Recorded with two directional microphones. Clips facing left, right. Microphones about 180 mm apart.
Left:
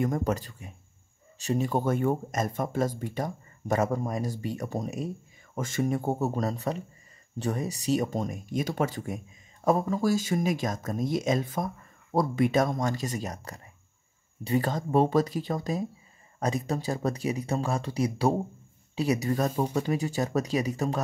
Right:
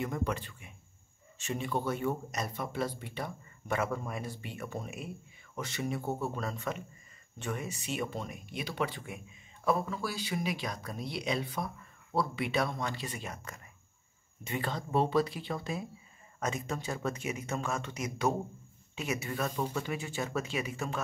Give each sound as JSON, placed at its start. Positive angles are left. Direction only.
{"t": 0.0, "sound": "speech", "side_deg": 45}